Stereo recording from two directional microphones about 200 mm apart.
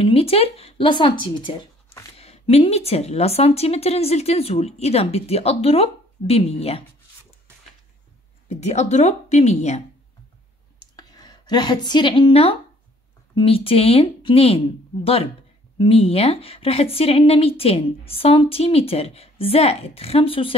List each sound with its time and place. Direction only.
0.0 s speech: 30° left (ahead or behind)
8.5 s speech: 35° left (ahead or behind)
10.8 s a sound: 20° left (ahead or behind)
13.3 s speech: 25° left (ahead or behind)
15.8 s speech: 30° left (ahead or behind)